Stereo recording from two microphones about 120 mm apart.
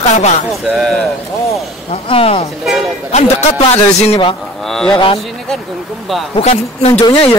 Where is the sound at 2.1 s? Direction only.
50° left (ahead or behind).